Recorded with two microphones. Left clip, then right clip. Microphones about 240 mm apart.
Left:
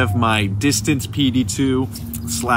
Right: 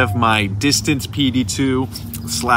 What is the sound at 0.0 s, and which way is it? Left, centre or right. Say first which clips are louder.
Speech: right 3 dB; centre.